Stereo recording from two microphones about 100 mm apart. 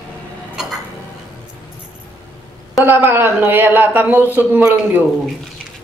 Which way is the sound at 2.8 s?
20° right (ahead or behind).